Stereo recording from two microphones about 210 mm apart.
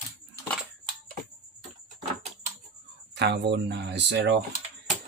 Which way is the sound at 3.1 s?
55° right (ahead or behind).